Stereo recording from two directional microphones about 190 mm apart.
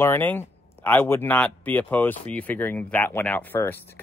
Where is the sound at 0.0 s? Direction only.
10° left (ahead or behind).